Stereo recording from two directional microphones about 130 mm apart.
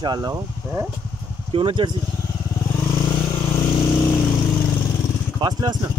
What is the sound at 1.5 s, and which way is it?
Speech, 40° right (ahead or behind).